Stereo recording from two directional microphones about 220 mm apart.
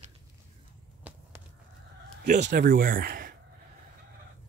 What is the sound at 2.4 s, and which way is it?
Speech, 40° right (ahead or behind).